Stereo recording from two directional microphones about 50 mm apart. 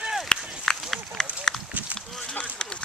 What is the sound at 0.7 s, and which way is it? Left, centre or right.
Run, centre.